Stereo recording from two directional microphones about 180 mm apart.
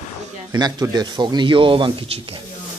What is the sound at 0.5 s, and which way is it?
Speech, 20° right (ahead or behind).